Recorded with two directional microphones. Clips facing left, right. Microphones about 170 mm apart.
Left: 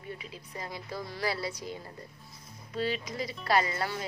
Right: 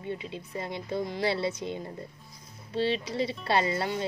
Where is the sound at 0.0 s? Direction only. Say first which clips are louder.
Right 7 dB; 25° right (ahead or behind).